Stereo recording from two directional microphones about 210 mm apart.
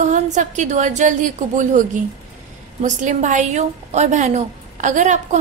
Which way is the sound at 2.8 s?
35° right (ahead or behind).